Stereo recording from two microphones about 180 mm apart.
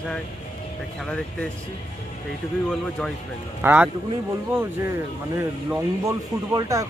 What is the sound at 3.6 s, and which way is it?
Speech, 10° right (ahead or behind).